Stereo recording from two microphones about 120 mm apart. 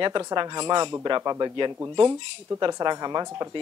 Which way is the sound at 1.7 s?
20° right (ahead or behind).